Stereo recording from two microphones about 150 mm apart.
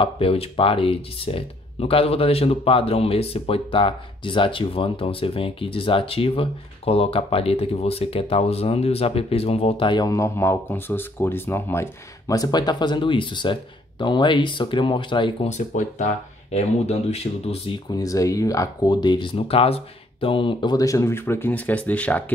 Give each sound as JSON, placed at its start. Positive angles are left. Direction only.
{"t": 0.0, "sound": "speech", "side_deg": 40}
{"t": 15.4, "sound": "speech", "side_deg": 55}
{"t": 17.8, "sound": "speech", "side_deg": 25}